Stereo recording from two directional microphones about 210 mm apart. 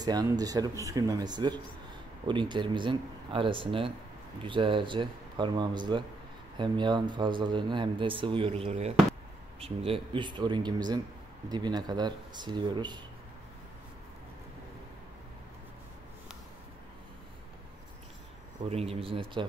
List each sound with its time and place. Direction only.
0.0 s speech: 20° right (ahead or behind)
18.7 s speech: 30° right (ahead or behind)